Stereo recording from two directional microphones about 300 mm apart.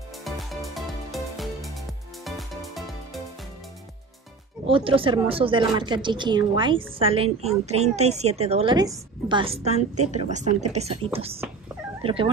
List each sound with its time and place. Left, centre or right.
0.2 s music: centre
4.6 s a woman's voice: centre